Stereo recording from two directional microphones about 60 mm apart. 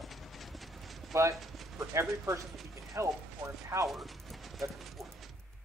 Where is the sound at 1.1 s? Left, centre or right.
Right.